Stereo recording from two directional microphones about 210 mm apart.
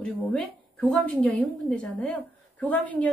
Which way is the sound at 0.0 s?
5° left (ahead or behind).